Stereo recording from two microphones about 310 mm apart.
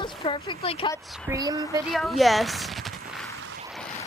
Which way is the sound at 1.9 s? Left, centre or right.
Centre.